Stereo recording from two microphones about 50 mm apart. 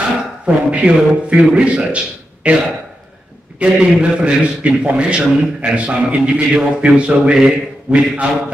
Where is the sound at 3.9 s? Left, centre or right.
Right.